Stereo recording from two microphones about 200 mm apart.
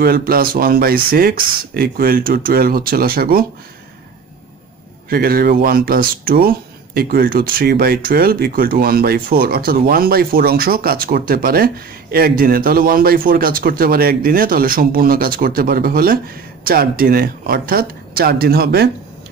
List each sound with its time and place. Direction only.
0.0 s speech: 50° right (ahead or behind)
5.1 s speech: 50° right (ahead or behind)